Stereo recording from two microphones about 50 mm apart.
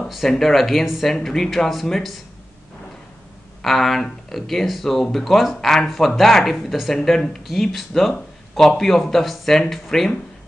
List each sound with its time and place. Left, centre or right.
0.4 s speech: centre
3.6 s speech: centre
7.0 s speech: centre